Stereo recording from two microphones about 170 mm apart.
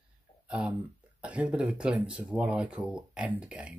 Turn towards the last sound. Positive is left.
turn(degrees=-5)  # may be behind; listen again after turning